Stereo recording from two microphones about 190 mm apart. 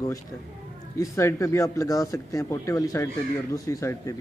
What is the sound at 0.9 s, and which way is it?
Speech, 15° left (ahead or behind).